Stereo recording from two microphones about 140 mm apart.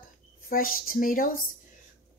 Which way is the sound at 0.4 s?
90° left.